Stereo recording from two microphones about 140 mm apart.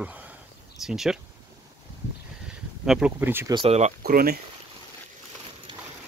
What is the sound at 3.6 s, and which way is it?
Speech, 50° right (ahead or behind).